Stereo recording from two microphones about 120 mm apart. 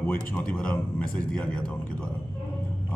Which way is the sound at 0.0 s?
10° left (ahead or behind).